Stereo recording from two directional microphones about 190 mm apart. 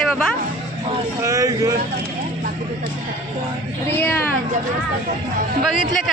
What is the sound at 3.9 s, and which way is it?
Speech, 10° left (ahead or behind).